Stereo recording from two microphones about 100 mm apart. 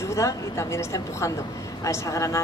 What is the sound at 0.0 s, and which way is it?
A woman's voice, 30° left (ahead or behind).